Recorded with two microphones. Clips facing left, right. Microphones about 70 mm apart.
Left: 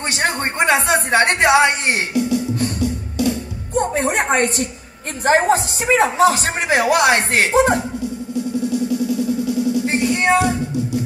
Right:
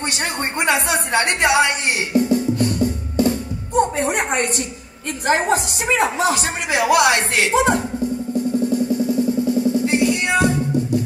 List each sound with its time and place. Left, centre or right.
0.1 s speech: left
2.1 s music: right
3.9 s music: left
5.2 s speech: left
8.6 s music: right
9.8 s music: left